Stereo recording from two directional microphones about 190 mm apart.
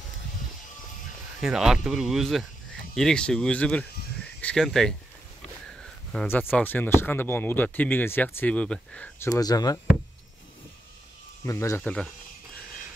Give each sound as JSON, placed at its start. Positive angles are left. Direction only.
{"t": 1.4, "sound": "speech", "side_deg": 0}
{"t": 6.1, "sound": "speech", "side_deg": 10}
{"t": 9.3, "sound": "speech", "side_deg": 20}
{"t": 11.4, "sound": "speech", "side_deg": 15}